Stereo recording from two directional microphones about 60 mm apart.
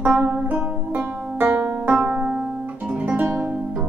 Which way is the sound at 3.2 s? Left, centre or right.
Right.